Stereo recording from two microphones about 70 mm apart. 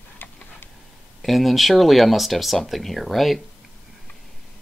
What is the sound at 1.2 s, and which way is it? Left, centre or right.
Speech, centre.